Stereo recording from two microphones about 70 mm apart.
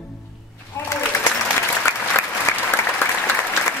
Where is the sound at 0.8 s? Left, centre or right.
Left.